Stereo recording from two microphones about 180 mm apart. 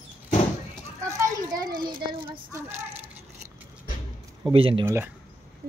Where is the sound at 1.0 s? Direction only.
20° right (ahead or behind).